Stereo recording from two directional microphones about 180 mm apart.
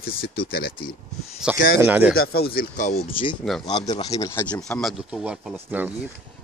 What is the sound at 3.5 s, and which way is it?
Speech, centre (ahead or behind).